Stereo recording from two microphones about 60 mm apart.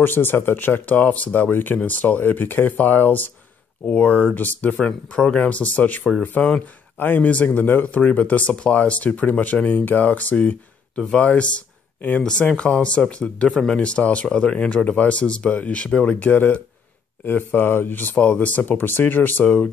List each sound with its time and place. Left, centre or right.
0.0 s speech: left
6.4 s speech: centre
7.0 s speech: left
11.0 s speech: centre; by 18.1 s left
18.1 s speech: centre